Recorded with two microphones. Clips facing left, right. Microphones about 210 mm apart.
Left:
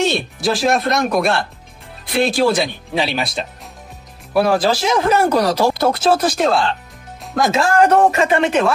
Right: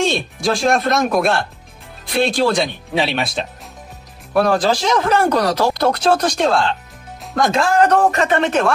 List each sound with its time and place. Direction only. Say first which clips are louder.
0.0 s speech: even; 5° left (ahead or behind)